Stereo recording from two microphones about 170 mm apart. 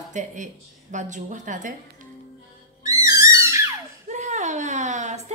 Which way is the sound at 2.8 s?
20° right (ahead or behind).